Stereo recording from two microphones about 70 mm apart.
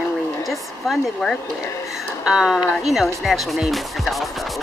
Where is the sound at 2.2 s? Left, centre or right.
Centre.